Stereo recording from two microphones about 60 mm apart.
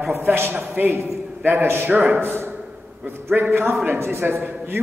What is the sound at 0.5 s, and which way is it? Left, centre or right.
A man's voice, right.